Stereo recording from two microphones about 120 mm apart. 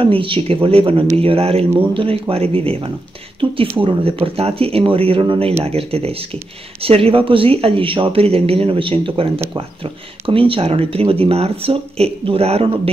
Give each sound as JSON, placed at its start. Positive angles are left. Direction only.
{"t": 0.0, "sound": "speech", "side_deg": -45}
{"t": 5.6, "sound": "speech", "side_deg": -55}